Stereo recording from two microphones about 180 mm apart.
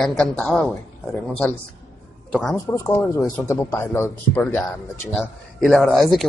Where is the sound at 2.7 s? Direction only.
15° left (ahead or behind).